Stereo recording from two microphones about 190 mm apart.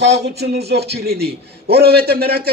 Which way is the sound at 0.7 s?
60° right (ahead or behind).